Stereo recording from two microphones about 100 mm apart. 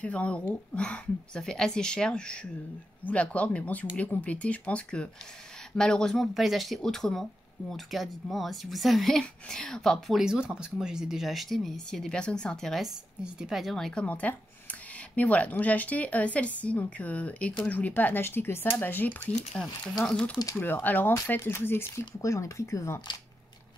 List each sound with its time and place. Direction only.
0.0 s speech: 15° left (ahead or behind)
14.0 s speech: 15° left (ahead or behind)
20.5 s speech: 20° left (ahead or behind)